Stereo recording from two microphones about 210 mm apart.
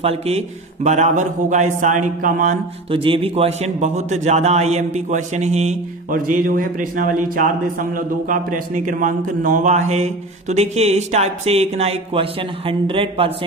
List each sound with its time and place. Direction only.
0.0 s a man's voice: 30° right (ahead or behind)